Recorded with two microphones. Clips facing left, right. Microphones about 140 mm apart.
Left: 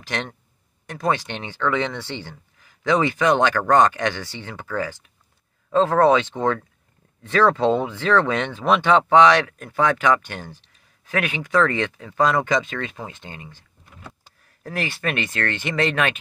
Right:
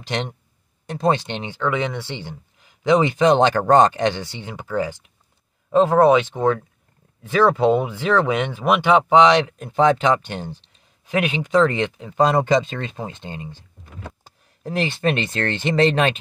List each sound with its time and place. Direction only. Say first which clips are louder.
0.0 s speech: right 3 dB; 20° right (ahead or behind)